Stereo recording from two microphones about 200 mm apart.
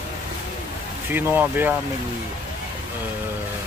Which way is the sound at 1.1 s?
10° right (ahead or behind).